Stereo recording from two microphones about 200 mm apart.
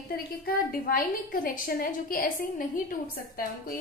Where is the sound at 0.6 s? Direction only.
45° left (ahead or behind).